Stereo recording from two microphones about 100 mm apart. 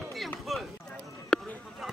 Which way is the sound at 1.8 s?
Centre (ahead or behind).